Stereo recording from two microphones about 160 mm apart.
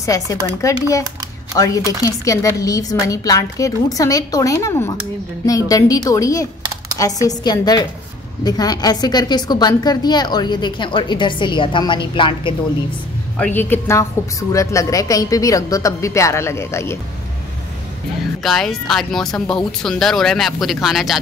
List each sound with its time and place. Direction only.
0.0 s a woman's voice: 20° left (ahead or behind)
13.4 s a woman's voice: 10° left (ahead or behind)
18.4 s speech: centre (ahead or behind)